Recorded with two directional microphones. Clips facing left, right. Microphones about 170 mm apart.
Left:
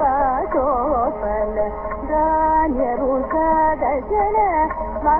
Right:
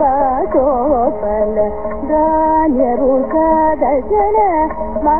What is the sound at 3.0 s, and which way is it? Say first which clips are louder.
Music: right 7 dB; 40° right (ahead or behind).